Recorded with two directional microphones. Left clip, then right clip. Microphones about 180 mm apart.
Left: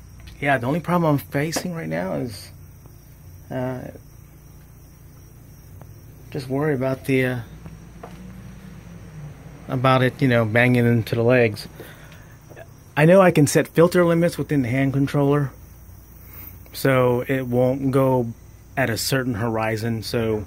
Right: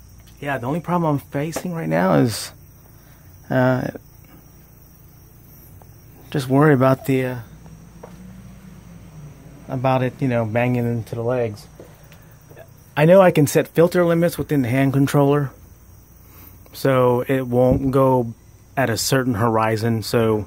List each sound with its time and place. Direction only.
0.6 s speech: 10° right (ahead or behind)
2.0 s speech: 50° right (ahead or behind)
6.2 s speech: 50° right (ahead or behind)
9.7 s speech: 5° right (ahead or behind)
10.9 s speech: 15° left (ahead or behind)
12.5 s speech: 10° right (ahead or behind); by 15.2 s 25° right (ahead or behind)
15.2 s speech: 10° right (ahead or behind)
16.7 s speech: 10° right (ahead or behind); by 20.3 s 35° right (ahead or behind)